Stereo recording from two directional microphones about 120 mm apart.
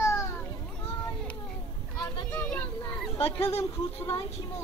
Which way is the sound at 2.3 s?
10° left (ahead or behind).